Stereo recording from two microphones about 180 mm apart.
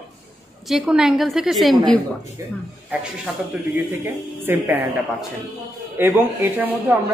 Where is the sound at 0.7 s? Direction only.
5° right (ahead or behind).